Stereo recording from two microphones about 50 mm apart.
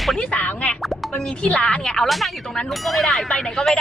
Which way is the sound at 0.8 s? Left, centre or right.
Centre.